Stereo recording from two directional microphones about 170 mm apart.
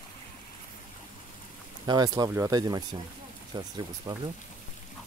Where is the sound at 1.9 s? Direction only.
20° right (ahead or behind).